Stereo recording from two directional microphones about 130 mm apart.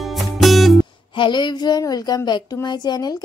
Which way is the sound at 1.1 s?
35° left (ahead or behind).